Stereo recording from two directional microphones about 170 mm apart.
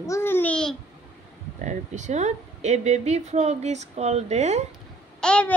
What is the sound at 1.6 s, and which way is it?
Speech, 45° right (ahead or behind).